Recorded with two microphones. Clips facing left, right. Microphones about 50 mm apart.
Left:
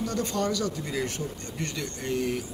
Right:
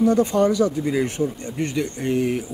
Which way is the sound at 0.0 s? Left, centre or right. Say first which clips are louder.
Right 11 dB; centre.